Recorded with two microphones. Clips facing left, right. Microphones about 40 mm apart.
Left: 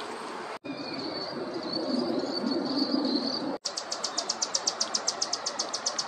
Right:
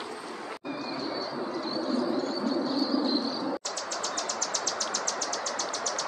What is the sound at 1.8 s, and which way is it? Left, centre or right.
Train, right.